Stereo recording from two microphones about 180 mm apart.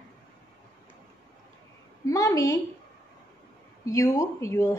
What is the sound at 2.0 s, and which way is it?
Speech, 20° left (ahead or behind).